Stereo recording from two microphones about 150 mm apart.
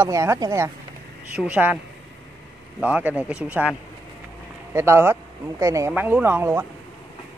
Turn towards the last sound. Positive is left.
turn(degrees=-15)  # may be behind; listen again after turning